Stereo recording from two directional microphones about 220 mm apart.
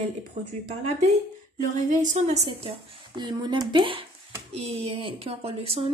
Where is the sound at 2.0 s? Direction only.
30° right (ahead or behind).